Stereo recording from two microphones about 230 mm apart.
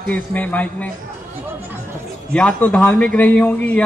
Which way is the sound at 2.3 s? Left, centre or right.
Centre.